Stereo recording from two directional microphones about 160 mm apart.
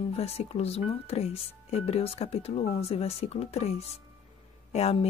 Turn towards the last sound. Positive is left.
turn(degrees=40)  # may be behind; listen again after turning